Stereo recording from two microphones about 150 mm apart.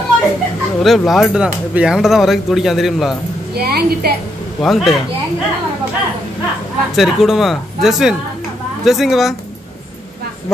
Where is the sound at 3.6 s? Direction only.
90° right.